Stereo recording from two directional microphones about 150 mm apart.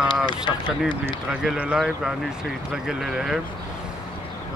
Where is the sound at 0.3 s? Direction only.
30° left (ahead or behind).